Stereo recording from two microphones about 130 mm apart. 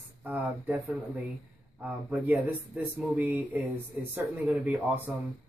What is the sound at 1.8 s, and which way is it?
Speech, 10° right (ahead or behind).